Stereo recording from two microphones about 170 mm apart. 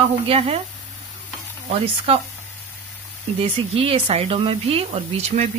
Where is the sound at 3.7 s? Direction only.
35° right (ahead or behind).